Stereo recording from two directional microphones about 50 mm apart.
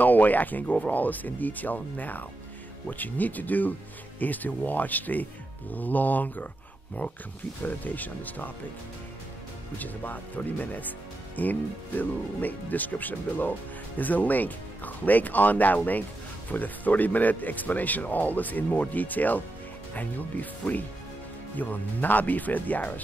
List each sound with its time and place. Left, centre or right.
0.0 s speech: left
9.8 s speech: left